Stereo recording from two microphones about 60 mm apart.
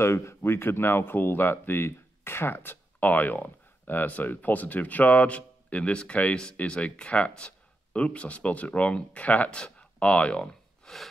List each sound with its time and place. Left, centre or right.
0.0 s speech: left; by 11.0 s centre